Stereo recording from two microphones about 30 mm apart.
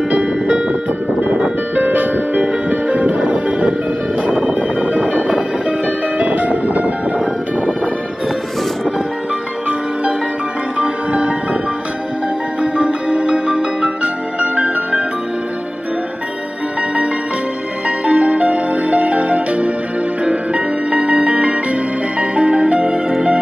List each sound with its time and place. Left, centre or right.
0.1 s music: right
1.8 s music: right
2.3 s music: right
10.8 s music: right
12.7 s music: right
17.8 s music: right